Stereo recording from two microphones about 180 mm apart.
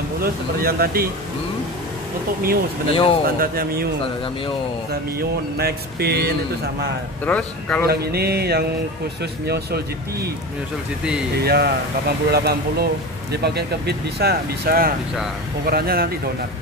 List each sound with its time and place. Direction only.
0.2 s speech: 55° right (ahead or behind)
2.9 s speech: 30° left (ahead or behind)
3.3 s speech: 55° right (ahead or behind)
5.6 s speech: 60° right (ahead or behind)
7.2 s speech: 5° left (ahead or behind)
7.8 s speech: 60° right (ahead or behind)
11.4 s speech: 60° right (ahead or behind)